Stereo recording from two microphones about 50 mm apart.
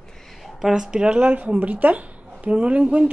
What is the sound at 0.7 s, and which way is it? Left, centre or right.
Speech, centre.